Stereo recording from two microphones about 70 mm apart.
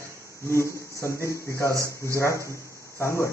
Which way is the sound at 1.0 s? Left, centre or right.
Left.